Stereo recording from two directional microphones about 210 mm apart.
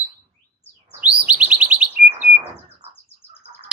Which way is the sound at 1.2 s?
5° right (ahead or behind).